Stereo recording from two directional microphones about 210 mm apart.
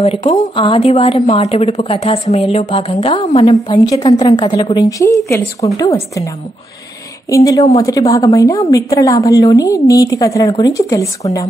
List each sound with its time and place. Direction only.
0.0 s a woman's voice: 30° left (ahead or behind)
3.6 s a woman's voice: 20° left (ahead or behind)
5.8 s a woman's voice: 25° left (ahead or behind)
7.2 s a woman's voice: 15° left (ahead or behind)